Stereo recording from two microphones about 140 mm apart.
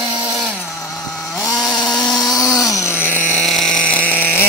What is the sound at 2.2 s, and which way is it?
Tools, 25° left (ahead or behind).